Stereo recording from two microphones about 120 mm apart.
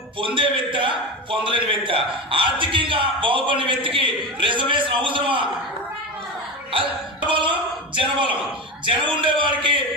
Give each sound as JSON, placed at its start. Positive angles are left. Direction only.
{"t": 0.2, "sound": "a man's voice", "side_deg": -45}
{"t": 6.7, "sound": "speech", "side_deg": -45}
{"t": 8.8, "sound": "a man's voice", "side_deg": -45}